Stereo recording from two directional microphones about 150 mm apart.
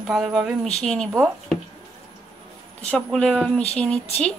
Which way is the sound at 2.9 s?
5° left (ahead or behind).